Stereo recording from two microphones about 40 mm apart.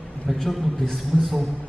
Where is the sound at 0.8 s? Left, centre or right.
Centre.